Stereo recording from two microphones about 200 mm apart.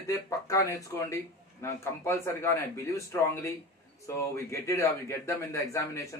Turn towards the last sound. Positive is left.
turn(degrees=15)  # may be behind; listen again after turning